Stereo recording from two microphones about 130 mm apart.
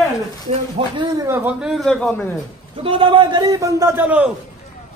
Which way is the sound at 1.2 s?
15° right (ahead or behind).